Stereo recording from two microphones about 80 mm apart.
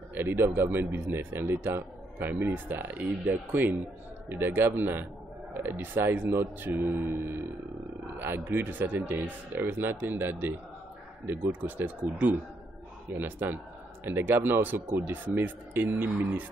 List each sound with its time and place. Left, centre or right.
0.1 s speech: right
4.3 s speech: right
11.2 s speech: right